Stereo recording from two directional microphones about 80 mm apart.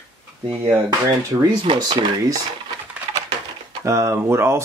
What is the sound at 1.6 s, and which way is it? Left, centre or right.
Speech, right.